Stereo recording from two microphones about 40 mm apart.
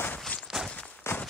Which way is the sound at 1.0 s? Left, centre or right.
Left.